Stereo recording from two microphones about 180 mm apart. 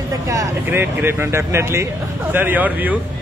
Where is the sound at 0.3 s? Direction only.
15° right (ahead or behind).